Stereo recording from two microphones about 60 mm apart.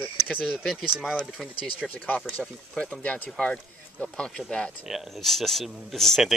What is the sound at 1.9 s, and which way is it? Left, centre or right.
Speech, left.